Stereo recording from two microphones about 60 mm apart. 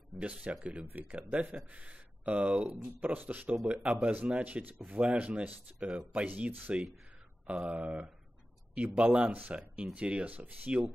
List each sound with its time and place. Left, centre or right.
0.2 s speech: right
1.1 s a man's voice: centre